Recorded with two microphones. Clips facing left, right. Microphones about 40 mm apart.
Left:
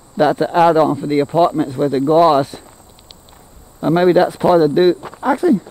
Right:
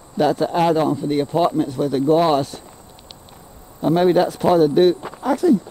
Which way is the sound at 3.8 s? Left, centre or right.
Left.